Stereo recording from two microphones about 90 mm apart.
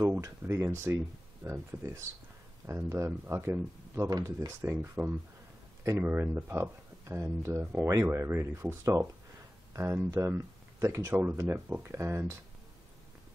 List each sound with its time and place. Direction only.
0.2 s speech: 35° right (ahead or behind)
4.1 s speech: 45° right (ahead or behind)
4.5 s speech: 30° right (ahead or behind)